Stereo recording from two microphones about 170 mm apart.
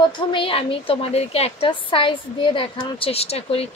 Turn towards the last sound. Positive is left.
turn(degrees=35)  # may be behind; listen again after turning